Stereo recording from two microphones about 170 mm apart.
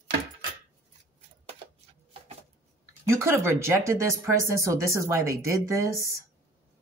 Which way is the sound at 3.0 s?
15° right (ahead or behind).